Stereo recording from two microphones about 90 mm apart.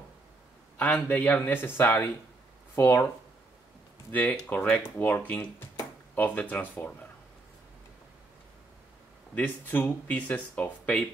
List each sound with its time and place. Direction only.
0.7 s speech: 15° left (ahead or behind)
4.1 s speech: 15° left (ahead or behind)
9.3 s speech: 20° left (ahead or behind)